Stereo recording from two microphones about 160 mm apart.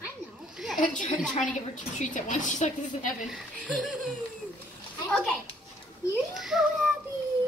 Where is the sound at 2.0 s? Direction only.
50° left (ahead or behind).